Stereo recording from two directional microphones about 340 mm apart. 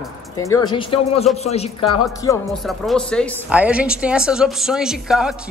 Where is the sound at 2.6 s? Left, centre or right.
Centre.